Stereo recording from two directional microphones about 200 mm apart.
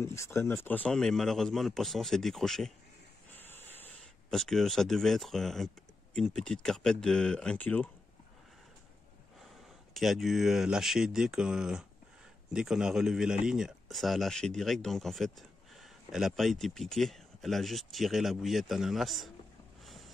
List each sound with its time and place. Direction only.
0.0 s speech: 15° left (ahead or behind)
3.3 s a sound: 10° left (ahead or behind)
6.1 s speech: 5° left (ahead or behind)
9.9 s speech: centre (ahead or behind)
19.8 s boat: centre (ahead or behind)